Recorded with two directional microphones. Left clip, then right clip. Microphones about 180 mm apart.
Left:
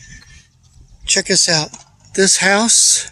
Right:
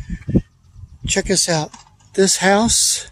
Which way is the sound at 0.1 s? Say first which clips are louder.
Right 18 dB; 15° right (ahead or behind).